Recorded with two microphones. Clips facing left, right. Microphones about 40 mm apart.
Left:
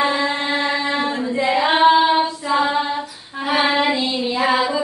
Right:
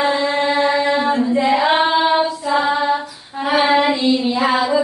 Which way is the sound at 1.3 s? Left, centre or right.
Centre.